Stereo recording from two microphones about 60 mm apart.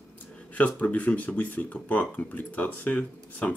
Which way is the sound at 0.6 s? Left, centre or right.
Left.